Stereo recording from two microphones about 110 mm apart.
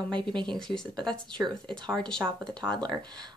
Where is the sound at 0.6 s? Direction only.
5° left (ahead or behind).